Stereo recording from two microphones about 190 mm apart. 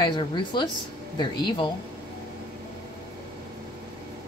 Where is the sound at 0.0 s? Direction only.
25° left (ahead or behind).